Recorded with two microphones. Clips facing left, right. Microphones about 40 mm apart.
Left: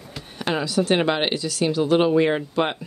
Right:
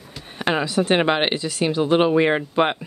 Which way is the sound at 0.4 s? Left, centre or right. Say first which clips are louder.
Right 2 dB; right.